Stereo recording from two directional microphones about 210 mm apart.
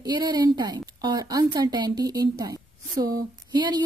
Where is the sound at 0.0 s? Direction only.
20° right (ahead or behind).